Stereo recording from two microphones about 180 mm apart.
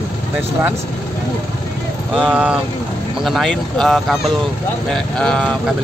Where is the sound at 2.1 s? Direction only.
5° right (ahead or behind).